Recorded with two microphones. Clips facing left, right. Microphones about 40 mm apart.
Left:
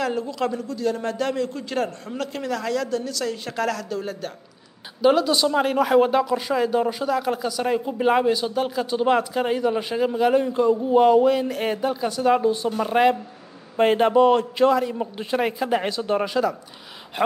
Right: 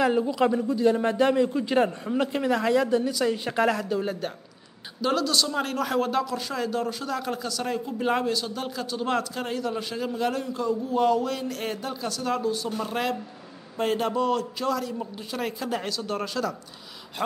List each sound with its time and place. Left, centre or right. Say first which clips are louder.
0.0 s speech: right 2 dB; centre
5.0 s speech: left 6 dB; centre
10.4 s a man's voice: left 8 dB; left